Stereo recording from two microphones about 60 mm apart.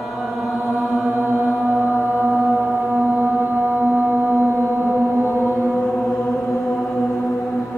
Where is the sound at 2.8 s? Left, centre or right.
Right.